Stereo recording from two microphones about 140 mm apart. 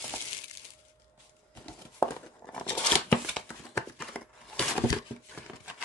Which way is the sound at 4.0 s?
10° left (ahead or behind).